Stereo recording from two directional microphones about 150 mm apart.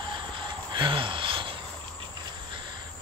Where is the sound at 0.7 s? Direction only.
35° right (ahead or behind).